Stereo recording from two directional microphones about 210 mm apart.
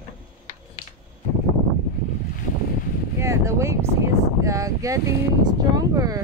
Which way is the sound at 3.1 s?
15° right (ahead or behind).